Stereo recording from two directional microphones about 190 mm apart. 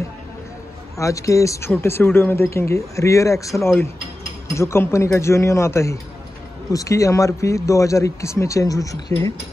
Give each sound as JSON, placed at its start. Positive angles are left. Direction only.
{"t": 0.9, "sound": "speech", "side_deg": 15}